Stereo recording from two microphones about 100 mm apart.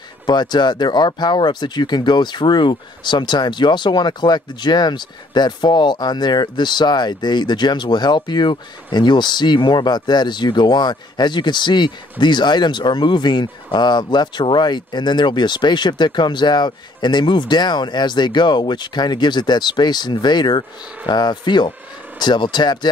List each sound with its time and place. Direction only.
0.3 s speech: 45° left (ahead or behind)